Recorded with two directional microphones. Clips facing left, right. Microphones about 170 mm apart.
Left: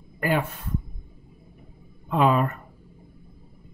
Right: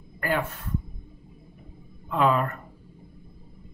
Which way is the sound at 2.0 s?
20° left (ahead or behind).